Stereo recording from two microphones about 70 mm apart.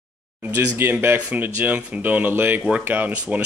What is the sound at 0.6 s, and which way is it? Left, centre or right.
Speech, right.